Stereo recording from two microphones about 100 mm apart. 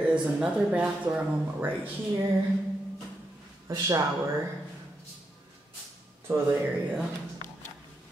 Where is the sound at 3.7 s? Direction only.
40° right (ahead or behind).